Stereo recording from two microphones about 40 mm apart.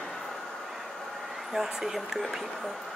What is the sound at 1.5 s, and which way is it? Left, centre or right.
Speech, centre.